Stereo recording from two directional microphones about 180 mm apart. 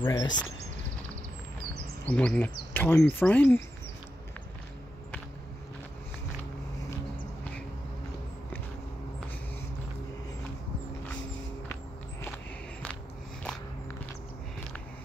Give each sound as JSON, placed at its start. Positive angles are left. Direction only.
{"t": 0.0, "sound": "speech", "side_deg": 20}
{"t": 2.0, "sound": "speech", "side_deg": 5}